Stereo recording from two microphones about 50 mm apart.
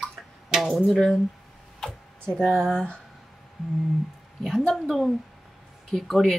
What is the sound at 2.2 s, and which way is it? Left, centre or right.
Speech, centre.